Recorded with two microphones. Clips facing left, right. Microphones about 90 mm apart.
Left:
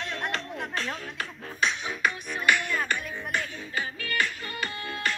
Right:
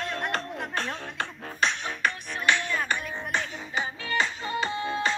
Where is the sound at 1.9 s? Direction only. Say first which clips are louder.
Even; 10° left (ahead or behind).